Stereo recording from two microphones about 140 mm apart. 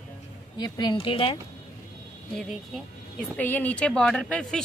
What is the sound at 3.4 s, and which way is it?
Speech, 10° left (ahead or behind).